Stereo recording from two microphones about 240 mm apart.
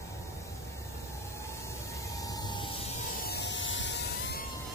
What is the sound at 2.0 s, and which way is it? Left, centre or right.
Emergency vehicle, centre.